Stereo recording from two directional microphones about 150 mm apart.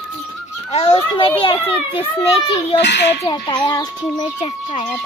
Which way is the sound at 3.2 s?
30° left (ahead or behind).